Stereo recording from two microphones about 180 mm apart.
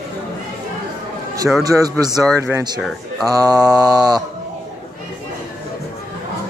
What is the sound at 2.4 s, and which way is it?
Mantra, 20° right (ahead or behind).